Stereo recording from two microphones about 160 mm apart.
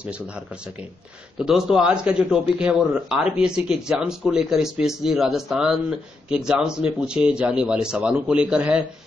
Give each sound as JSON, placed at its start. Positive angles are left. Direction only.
{"t": 1.4, "sound": "speech", "side_deg": -5}